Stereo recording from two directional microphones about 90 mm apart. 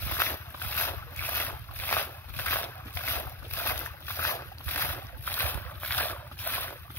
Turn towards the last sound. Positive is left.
turn(degrees=20)  # may be behind; listen again after turning